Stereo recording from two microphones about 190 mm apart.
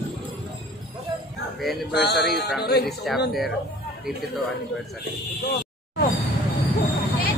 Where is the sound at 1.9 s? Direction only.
60° left (ahead or behind).